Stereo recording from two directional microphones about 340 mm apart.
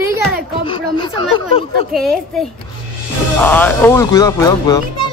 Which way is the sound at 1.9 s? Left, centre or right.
Centre.